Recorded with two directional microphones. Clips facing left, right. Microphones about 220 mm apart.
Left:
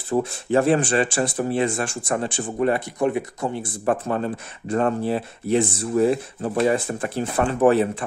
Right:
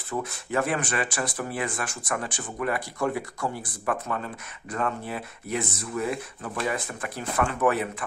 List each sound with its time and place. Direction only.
0.1 s speech: 30° left (ahead or behind)